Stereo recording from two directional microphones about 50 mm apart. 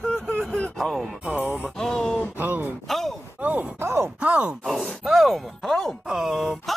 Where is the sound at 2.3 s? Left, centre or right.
Right.